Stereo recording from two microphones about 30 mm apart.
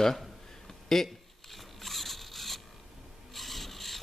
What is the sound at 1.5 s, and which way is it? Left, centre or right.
Zipper, centre.